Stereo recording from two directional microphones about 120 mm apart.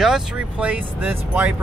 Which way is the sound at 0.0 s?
5° right (ahead or behind).